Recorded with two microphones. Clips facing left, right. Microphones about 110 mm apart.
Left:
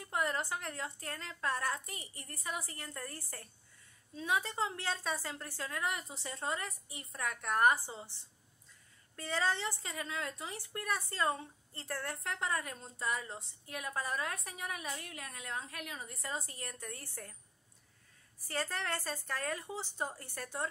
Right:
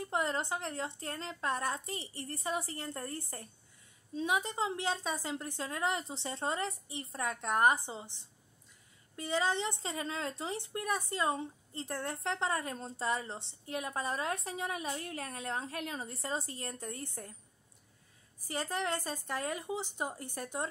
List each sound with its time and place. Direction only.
0.0 s speech: 25° right (ahead or behind)
18.5 s speech: 15° right (ahead or behind)